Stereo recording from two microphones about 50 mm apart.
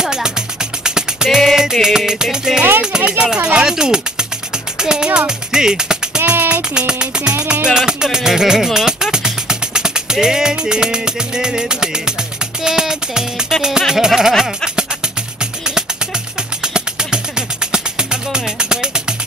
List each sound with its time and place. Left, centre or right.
0.0 s music: centre
3.5 s speech: centre
6.5 s music: right
16.6 s music: centre